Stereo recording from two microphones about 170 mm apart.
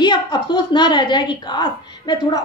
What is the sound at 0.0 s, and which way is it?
A woman's voice, 25° left (ahead or behind).